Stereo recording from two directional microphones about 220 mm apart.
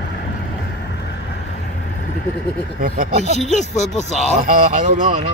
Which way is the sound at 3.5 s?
30° left (ahead or behind).